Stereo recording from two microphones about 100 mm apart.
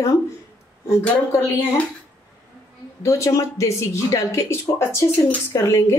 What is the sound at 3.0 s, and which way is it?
A woman's voice, 30° left (ahead or behind).